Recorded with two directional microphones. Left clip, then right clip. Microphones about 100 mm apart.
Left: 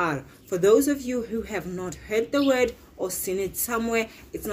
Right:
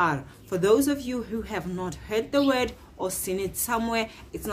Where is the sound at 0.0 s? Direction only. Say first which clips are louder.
Right 2 dB; 15° right (ahead or behind).